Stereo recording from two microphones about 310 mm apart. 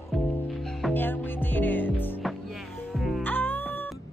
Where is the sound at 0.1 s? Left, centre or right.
Centre.